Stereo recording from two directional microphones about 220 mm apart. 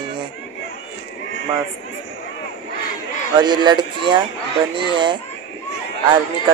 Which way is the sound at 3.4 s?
20° right (ahead or behind).